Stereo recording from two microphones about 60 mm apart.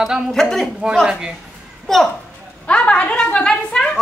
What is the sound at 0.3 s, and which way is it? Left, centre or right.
Speech, centre.